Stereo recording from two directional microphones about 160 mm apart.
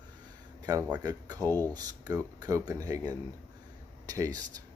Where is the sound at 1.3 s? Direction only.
10° left (ahead or behind).